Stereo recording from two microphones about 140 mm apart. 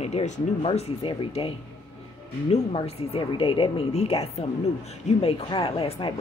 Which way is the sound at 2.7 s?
45° left (ahead or behind).